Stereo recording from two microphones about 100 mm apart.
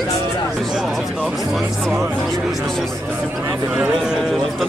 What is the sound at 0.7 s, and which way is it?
A man's voice, 5° right (ahead or behind).